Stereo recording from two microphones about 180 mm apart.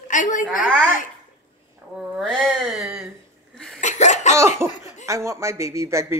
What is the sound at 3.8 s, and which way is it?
Laughter, 40° left (ahead or behind).